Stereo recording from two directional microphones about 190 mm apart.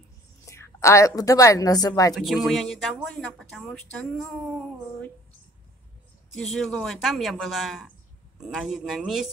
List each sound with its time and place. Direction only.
0.5 s a woman's voice: 15° left (ahead or behind)
2.1 s speech: centre (ahead or behind)
6.4 s speech: centre (ahead or behind)